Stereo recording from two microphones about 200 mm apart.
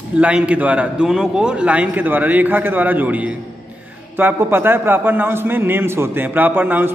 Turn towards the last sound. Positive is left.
turn(degrees=-10)  # may be behind; listen again after turning